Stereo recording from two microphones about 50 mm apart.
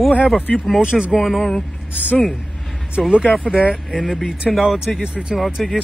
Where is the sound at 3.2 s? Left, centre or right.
Left.